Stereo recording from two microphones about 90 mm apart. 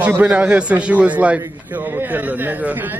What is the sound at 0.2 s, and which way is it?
A man's voice, 15° right (ahead or behind).